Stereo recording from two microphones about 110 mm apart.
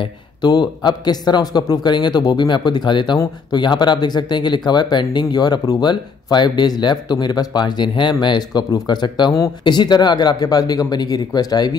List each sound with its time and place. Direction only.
0.0 s speech: 40° left (ahead or behind)